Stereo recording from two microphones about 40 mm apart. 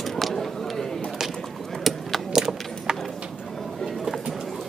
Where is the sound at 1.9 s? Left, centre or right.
Centre.